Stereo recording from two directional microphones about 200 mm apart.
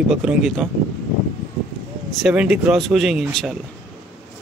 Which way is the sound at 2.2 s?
5° right (ahead or behind).